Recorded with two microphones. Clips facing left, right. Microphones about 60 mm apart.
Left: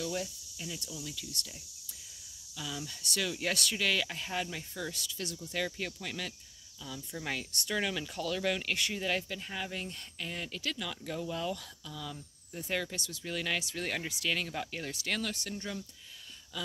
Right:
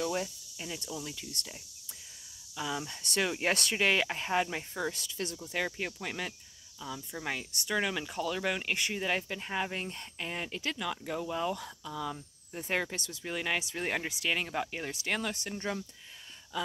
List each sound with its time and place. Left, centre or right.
0.0 s speech: right
5.8 s speech: right
16.5 s gasp: right